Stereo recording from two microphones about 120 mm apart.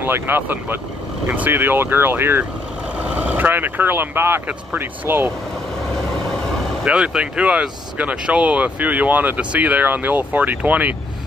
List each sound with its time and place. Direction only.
0.0 s speech: 15° right (ahead or behind)
6.8 s speech: 5° right (ahead or behind)